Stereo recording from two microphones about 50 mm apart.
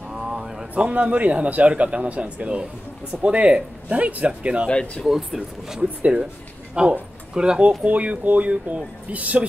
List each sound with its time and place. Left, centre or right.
0.1 s a sound: centre
0.8 s a man's voice: right
4.6 s speech: left
5.0 s speech: centre
7.8 s a man's voice: right